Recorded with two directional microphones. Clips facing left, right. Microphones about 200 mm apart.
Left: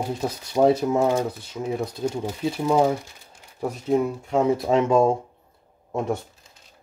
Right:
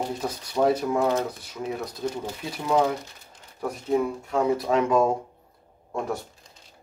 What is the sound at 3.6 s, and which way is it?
Speech, 25° left (ahead or behind).